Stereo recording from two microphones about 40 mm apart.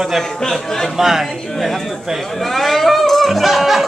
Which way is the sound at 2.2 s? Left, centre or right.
Centre.